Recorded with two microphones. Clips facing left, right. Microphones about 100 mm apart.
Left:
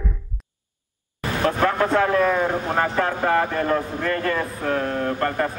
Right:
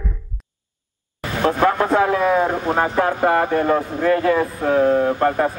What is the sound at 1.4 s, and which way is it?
Speech, 15° right (ahead or behind).